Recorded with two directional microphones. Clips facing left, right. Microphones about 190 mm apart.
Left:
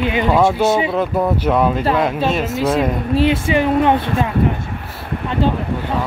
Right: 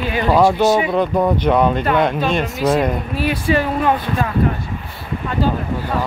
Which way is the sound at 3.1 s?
25° left (ahead or behind).